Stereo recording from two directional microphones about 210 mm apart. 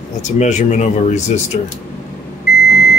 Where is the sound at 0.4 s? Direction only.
35° left (ahead or behind).